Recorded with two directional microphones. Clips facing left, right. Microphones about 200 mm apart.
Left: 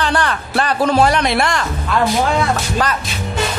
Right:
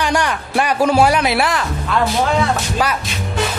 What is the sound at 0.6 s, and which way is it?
Speech, 10° right (ahead or behind).